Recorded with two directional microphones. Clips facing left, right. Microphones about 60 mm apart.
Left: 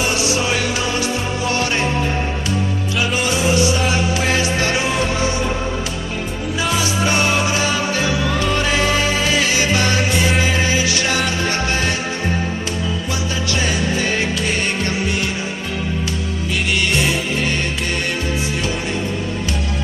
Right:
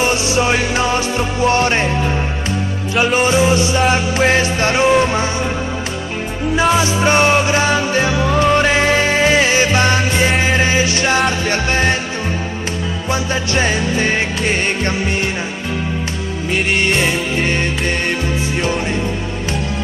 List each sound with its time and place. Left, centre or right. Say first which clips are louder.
0.1 s music: right 3 dB; right
3.2 s music: right 3 dB; right
6.5 s music: right 6 dB; right
13.1 s music: right 8 dB; right
16.5 s music: right 4 dB; right